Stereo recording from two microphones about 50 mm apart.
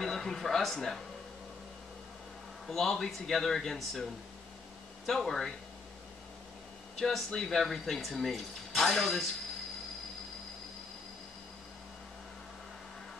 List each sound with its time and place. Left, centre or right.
0.0 s speech: centre
2.6 s speech: centre
7.0 s speech: centre